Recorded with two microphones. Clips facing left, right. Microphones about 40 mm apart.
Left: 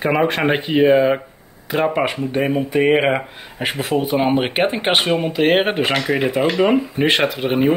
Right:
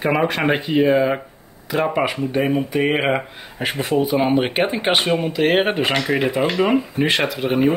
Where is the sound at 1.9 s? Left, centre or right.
Centre.